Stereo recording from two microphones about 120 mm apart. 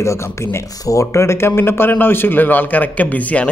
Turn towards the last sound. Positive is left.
turn(degrees=10)  # may be behind; listen again after turning